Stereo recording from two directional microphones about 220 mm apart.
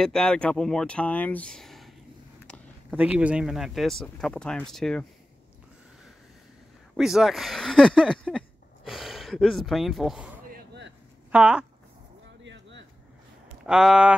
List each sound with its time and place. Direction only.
0.0 s speech: 5° left (ahead or behind)
2.4 s a sound: 5° left (ahead or behind)
3.0 s speech: 5° right (ahead or behind)
7.0 s speech: centre (ahead or behind)
10.5 s vehicle: 50° right (ahead or behind)
11.3 s speech: 5° right (ahead or behind)
12.4 s a sound: 55° right (ahead or behind)
13.7 s speech: 5° right (ahead or behind)